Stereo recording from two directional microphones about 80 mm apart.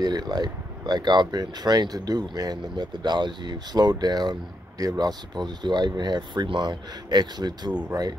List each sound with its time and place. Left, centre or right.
0.0 s speech: right